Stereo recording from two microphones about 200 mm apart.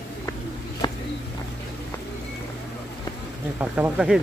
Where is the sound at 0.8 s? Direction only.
20° left (ahead or behind).